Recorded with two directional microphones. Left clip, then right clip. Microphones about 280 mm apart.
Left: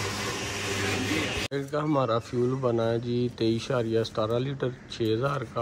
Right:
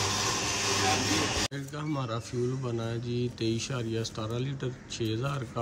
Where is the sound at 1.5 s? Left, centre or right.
Centre.